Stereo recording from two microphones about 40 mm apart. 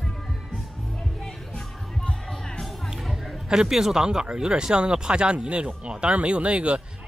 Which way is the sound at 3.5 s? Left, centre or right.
Centre.